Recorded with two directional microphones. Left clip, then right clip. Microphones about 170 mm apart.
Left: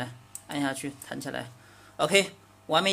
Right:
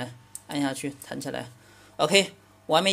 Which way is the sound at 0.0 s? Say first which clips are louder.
Even; 15° right (ahead or behind).